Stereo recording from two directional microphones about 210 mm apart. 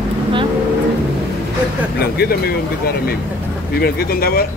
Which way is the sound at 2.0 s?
50° left (ahead or behind).